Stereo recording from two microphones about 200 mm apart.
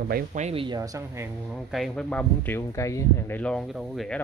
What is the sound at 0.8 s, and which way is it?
Speech, 15° right (ahead or behind).